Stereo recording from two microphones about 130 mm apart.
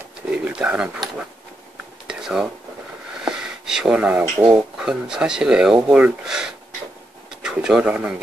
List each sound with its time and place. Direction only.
0.3 s speech: 10° right (ahead or behind)
2.0 s a sound: 5° right (ahead or behind)
4.4 s speech: 20° right (ahead or behind)
4.7 s speech: 5° right (ahead or behind)